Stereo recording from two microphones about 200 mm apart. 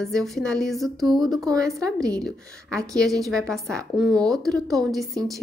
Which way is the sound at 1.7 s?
15° right (ahead or behind).